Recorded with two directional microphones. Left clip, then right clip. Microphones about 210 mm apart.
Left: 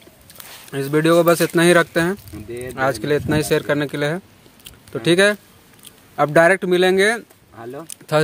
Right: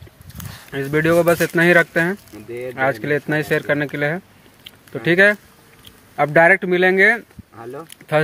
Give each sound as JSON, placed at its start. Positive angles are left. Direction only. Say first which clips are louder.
{"t": 0.5, "sound": "speech", "louder": "left 1 dB", "side_deg": 15}
{"t": 7.5, "sound": "speech", "louder": "even", "side_deg": 40}